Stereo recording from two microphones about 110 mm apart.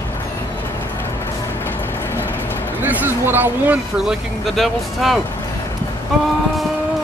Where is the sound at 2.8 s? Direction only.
15° right (ahead or behind).